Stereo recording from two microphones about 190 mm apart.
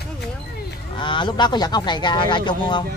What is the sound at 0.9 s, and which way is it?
Speech, 25° left (ahead or behind).